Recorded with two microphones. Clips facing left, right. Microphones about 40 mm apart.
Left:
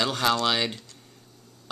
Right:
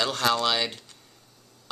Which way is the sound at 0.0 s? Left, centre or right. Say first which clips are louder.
Even; centre.